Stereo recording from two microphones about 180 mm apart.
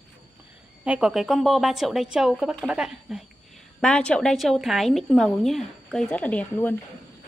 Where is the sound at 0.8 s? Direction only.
5° right (ahead or behind).